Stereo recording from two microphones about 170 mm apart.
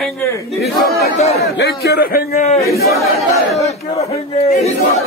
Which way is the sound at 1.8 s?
65° left (ahead or behind).